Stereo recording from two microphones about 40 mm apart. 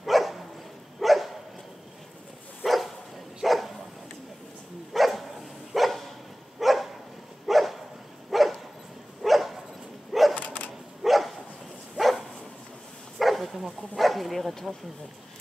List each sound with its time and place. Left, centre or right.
0.0 s dog: centre
2.6 s bow-wow: centre
3.4 s dog: centre
4.9 s dog: centre
10.3 s a sound: left
11.0 s dog: centre
13.2 s speech: centre